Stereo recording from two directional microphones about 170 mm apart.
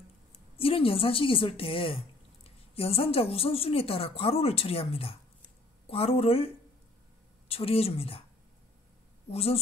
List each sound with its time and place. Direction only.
0.6 s speech: 35° left (ahead or behind)
9.3 s speech: 35° left (ahead or behind)